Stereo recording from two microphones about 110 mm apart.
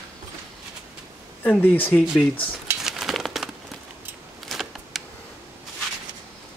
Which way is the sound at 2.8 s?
5° right (ahead or behind).